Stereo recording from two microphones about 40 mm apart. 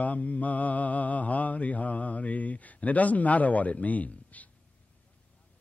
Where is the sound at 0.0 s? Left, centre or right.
Left.